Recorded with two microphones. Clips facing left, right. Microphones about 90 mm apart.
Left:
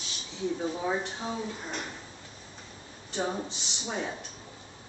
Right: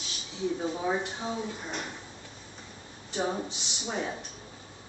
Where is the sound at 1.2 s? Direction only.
5° right (ahead or behind).